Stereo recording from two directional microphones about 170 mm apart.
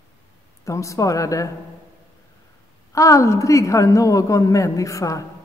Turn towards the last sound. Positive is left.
turn(degrees=20)  # may be behind; listen again after turning